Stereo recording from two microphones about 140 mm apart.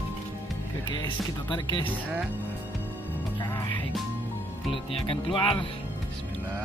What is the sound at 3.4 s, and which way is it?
Music, 25° left (ahead or behind).